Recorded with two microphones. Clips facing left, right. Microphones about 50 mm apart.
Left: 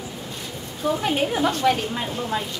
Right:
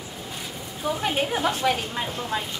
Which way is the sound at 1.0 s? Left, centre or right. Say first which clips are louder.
Left 1 dB; centre.